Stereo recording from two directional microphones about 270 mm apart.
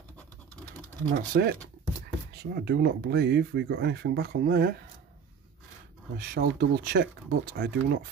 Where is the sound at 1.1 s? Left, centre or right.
Right.